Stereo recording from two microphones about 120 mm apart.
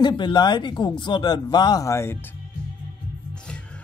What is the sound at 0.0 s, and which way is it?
A man's voice, 40° left (ahead or behind).